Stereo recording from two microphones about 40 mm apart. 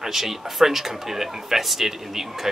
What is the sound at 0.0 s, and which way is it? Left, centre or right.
Speech, centre.